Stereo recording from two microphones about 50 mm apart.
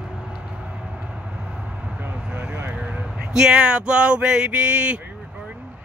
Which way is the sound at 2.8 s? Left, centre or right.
Centre.